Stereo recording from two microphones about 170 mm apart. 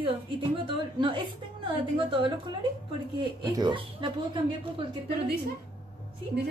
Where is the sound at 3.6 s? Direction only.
25° right (ahead or behind).